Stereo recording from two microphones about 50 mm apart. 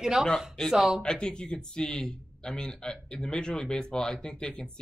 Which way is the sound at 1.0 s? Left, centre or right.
Centre.